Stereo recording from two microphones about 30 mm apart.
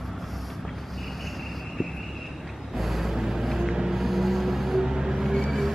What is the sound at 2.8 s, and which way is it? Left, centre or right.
Vehicle, centre.